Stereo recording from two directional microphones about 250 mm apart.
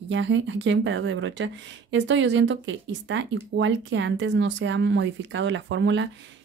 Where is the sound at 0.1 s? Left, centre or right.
Right.